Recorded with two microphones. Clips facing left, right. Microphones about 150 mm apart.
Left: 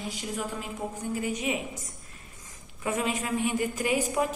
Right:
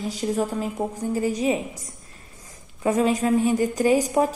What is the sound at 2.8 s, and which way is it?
A woman's voice, 35° right (ahead or behind).